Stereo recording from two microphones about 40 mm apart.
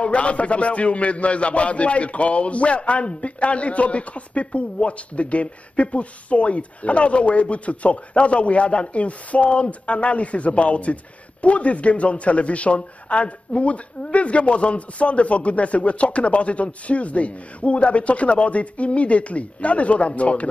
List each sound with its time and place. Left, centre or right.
0.0 s a man's voice: left